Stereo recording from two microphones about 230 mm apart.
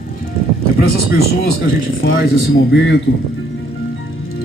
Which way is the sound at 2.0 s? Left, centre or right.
Left.